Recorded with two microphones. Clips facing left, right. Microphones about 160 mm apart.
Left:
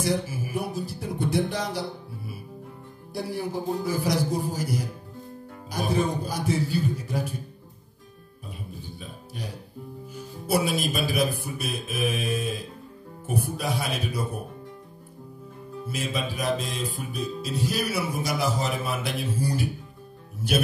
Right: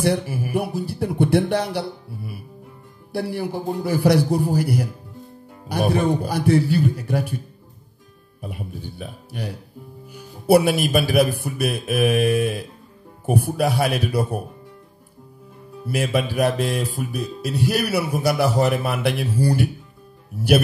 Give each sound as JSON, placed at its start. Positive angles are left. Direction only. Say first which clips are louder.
{"t": 0.0, "sound": "speech", "louder": "right 5 dB", "side_deg": -65}
{"t": 8.4, "sound": "speech", "louder": "right 7 dB", "side_deg": -65}
{"t": 15.9, "sound": "speech", "louder": "right 9 dB", "side_deg": -65}